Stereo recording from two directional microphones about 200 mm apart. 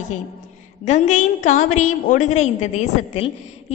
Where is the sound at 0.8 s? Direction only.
35° left (ahead or behind).